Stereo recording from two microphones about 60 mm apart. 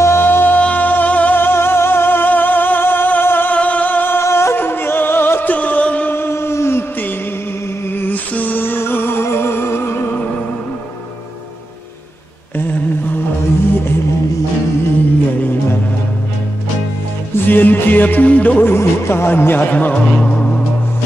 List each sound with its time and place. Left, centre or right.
0.0 s music: left
0.6 s music: left
3.5 s music: left
4.2 s music: left
6.1 s a sound: left
7.9 s music: left
12.5 s mantra: left
17.5 s music: left
18.7 s music: left
19.9 s music: centre